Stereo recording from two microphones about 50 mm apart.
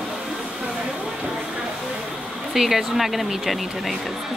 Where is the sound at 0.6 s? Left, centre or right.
Centre.